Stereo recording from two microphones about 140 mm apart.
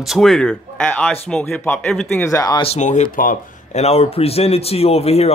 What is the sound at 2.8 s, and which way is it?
Speech, 60° left (ahead or behind).